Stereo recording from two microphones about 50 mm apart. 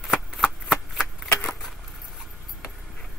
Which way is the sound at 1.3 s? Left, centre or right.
Left.